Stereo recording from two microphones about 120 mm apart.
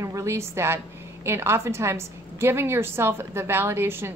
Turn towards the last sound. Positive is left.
turn(degrees=-20)  # may be behind; listen again after turning